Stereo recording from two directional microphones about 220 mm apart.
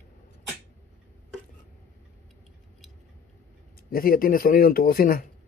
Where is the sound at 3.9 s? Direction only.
40° left (ahead or behind).